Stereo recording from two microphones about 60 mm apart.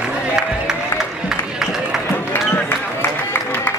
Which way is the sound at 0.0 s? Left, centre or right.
Centre.